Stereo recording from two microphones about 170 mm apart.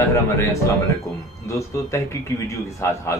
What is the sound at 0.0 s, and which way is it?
Speech, 15° left (ahead or behind).